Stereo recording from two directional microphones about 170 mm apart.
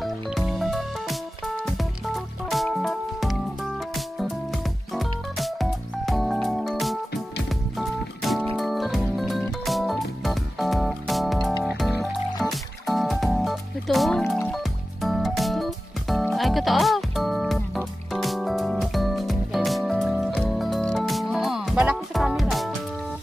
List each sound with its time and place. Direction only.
0.0 s music: centre (ahead or behind)